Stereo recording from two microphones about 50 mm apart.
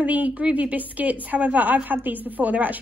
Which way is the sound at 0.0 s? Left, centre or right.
Right.